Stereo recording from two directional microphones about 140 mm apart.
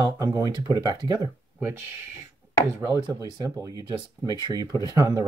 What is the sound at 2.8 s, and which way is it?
Speech, 30° right (ahead or behind).